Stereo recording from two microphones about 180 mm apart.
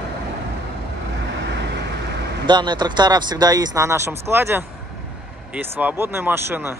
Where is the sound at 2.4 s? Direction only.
25° right (ahead or behind).